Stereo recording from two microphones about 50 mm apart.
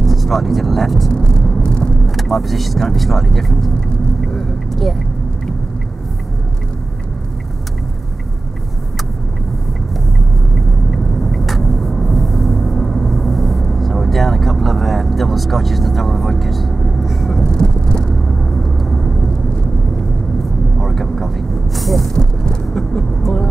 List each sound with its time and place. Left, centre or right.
0.0 s speech: centre
1.1 s vehicle: centre
2.0 s speech: centre
4.3 s vehicle: centre
10.5 s vehicle: centre
17.5 s vehicle: centre
18.2 s vehicle: centre
20.8 s vehicle: centre
22.1 s vehicle: centre